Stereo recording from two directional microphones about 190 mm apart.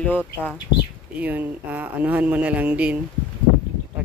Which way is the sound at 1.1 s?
10° right (ahead or behind).